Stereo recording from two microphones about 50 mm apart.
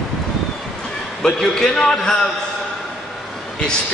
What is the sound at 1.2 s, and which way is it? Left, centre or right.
A man's voice, centre.